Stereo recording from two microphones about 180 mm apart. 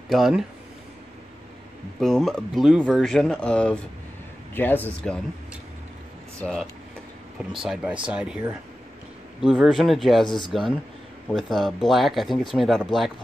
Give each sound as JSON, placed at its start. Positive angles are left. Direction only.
{"t": 0.1, "sound": "speech", "side_deg": 0}
{"t": 2.0, "sound": "speech", "side_deg": 0}
{"t": 6.4, "sound": "speech", "side_deg": 0}
{"t": 7.6, "sound": "speech", "side_deg": -5}
{"t": 9.4, "sound": "speech", "side_deg": -5}
{"t": 10.2, "sound": "speech", "side_deg": 25}
{"t": 10.5, "sound": "speech", "side_deg": 0}